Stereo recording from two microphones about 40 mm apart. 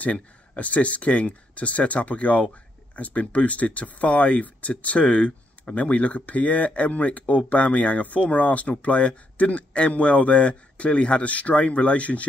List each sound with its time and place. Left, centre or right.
0.0 s speech: left